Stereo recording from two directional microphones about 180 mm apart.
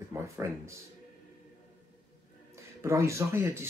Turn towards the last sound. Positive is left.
turn(degrees=-15)  # may be behind; listen again after turning